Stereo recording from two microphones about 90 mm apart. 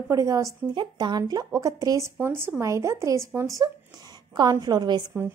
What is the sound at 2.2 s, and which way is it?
Speech, 25° right (ahead or behind).